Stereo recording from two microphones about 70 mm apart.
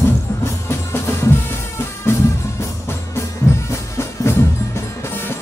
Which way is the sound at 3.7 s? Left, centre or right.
Left.